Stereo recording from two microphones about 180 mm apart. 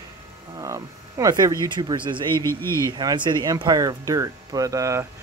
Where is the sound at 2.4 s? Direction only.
15° left (ahead or behind).